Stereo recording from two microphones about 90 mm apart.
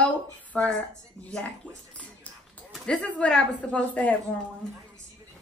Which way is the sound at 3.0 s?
15° left (ahead or behind).